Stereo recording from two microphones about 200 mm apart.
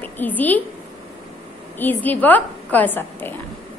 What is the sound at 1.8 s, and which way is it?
A woman's voice, 10° left (ahead or behind).